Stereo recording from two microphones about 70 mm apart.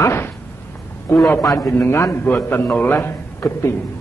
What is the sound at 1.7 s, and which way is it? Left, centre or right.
Speech, left.